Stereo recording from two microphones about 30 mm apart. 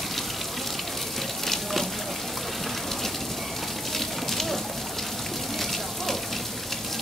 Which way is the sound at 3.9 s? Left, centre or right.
Centre.